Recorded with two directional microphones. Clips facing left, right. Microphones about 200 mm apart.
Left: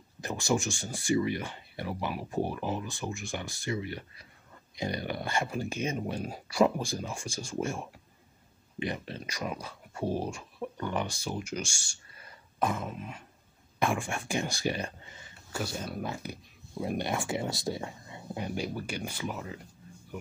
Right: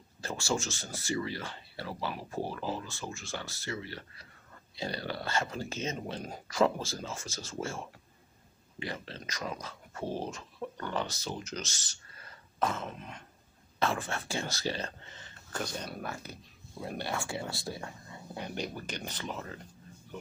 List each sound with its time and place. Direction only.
0.2 s speech: 15° left (ahead or behind)